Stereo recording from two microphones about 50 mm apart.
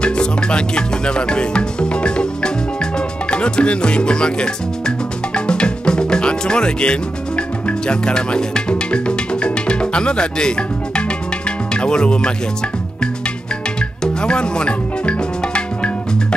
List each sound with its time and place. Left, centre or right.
0.0 s music: centre
13.7 s music: centre